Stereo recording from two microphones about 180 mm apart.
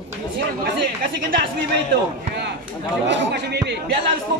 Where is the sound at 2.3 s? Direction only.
70° right (ahead or behind).